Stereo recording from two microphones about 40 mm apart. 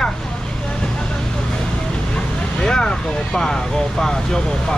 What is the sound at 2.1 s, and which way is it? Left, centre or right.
Speech, centre.